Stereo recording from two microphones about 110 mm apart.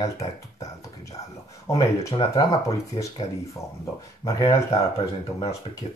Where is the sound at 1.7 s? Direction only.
30° left (ahead or behind).